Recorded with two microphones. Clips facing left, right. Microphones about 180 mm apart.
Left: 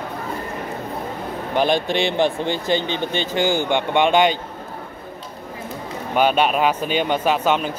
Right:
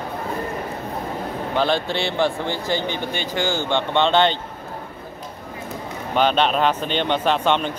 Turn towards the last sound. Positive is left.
turn(degrees=5)  # may be behind; listen again after turning